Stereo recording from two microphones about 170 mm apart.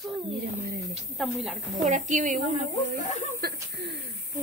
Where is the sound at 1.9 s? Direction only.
45° right (ahead or behind).